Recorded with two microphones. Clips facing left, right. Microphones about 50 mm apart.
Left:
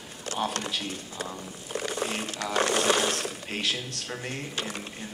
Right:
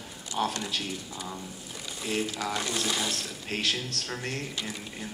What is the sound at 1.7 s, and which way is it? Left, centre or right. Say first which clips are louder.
Speech: left 2 dB; left.